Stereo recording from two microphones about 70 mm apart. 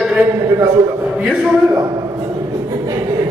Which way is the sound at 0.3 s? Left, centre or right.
Right.